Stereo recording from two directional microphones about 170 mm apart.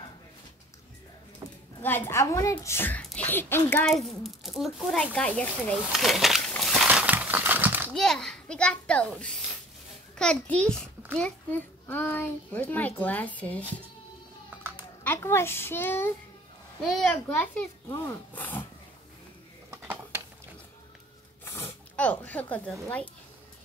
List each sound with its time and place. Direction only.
1.8 s a child's voice: 10° left (ahead or behind)
3.8 s a child's voice: centre (ahead or behind)
7.9 s a child's voice: centre (ahead or behind)
15.0 s a child's voice: 15° left (ahead or behind)
16.8 s a child's voice: centre (ahead or behind)
17.8 s speech: 20° left (ahead or behind)
19.7 s a sound: 15° right (ahead or behind)
21.5 s a sound: 15° left (ahead or behind)
22.2 s a child's voice: 10° left (ahead or behind)